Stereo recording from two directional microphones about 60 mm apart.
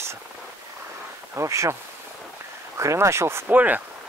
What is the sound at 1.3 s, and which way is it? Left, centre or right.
Speech, right.